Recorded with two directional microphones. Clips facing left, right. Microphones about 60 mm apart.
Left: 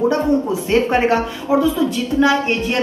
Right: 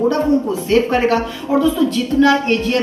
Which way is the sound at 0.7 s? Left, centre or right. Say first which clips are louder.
Right 1 dB; left.